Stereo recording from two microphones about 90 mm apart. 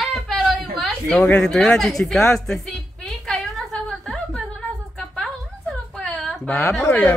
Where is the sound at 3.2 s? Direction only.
Centre (ahead or behind).